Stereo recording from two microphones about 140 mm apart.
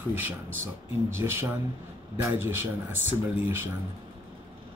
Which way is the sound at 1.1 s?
15° right (ahead or behind).